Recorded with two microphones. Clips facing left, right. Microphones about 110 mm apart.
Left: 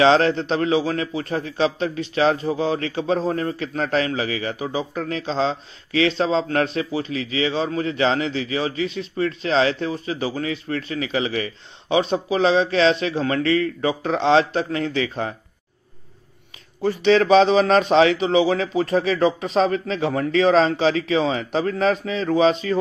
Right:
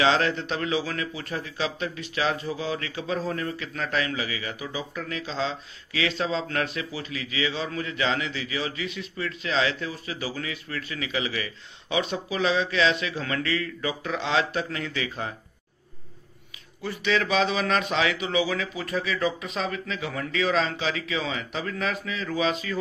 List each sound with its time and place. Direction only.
0.0 s a man's voice: 30° left (ahead or behind)
16.8 s a man's voice: 35° left (ahead or behind)